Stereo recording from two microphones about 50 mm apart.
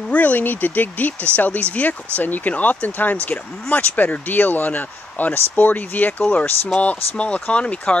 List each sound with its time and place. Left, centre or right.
0.1 s speech: left